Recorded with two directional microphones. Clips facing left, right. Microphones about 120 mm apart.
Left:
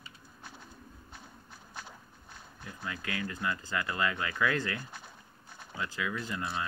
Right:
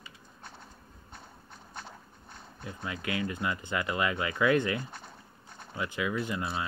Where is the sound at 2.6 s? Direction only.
20° right (ahead or behind).